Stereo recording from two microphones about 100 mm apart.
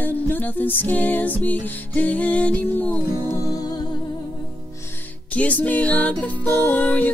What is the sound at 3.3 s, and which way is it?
Music, 40° left (ahead or behind).